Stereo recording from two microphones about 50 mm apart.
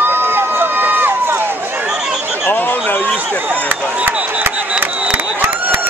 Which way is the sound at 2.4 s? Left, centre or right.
Left.